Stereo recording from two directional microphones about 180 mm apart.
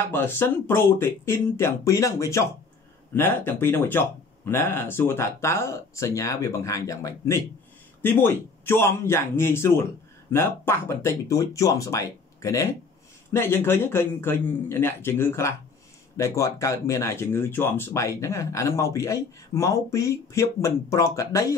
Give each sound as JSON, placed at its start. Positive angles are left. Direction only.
{"t": 0.1, "sound": "speech", "side_deg": 10}